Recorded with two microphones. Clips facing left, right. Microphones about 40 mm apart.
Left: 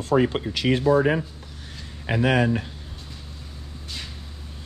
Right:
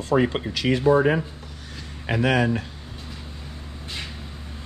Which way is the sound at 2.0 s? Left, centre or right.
Centre.